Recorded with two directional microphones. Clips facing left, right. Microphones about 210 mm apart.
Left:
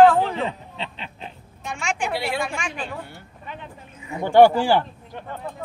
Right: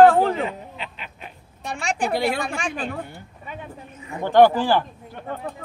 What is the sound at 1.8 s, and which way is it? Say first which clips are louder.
Speech: right 3 dB; 35° right (ahead or behind).